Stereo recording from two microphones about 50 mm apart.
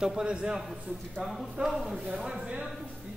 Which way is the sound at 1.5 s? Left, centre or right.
Centre.